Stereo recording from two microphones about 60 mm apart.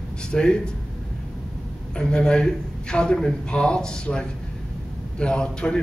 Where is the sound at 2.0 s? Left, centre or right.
Centre.